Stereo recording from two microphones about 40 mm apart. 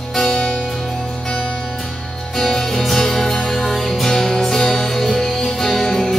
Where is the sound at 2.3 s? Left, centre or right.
Centre.